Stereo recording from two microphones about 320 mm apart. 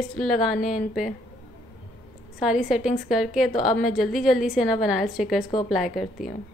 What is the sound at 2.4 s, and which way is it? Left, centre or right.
A woman's voice, centre.